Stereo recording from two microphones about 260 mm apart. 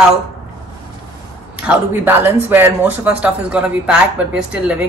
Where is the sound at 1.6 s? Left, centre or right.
Centre.